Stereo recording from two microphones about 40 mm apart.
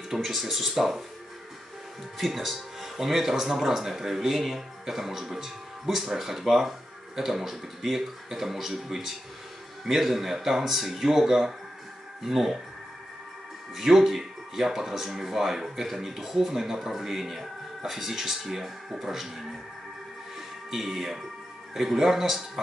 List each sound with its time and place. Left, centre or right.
0.1 s speech: centre
2.1 s speech: centre
13.7 s speech: centre
20.3 s music: centre
21.7 s speech: centre